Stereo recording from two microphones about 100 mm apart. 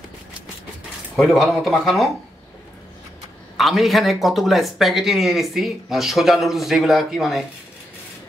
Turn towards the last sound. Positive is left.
turn(degrees=-5)  # may be behind; listen again after turning